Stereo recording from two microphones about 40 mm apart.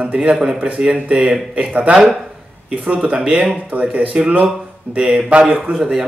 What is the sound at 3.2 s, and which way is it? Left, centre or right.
Speech, right.